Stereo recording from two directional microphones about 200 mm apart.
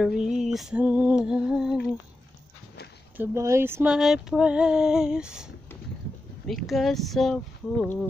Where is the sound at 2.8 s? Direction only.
50° left (ahead or behind).